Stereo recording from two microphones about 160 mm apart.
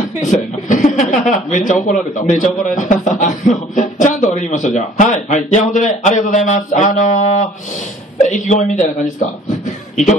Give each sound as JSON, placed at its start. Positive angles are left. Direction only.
{"t": 0.2, "sound": "a man's voice", "side_deg": 50}